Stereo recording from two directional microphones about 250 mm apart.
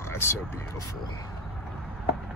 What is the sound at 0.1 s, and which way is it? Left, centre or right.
Vehicle, centre.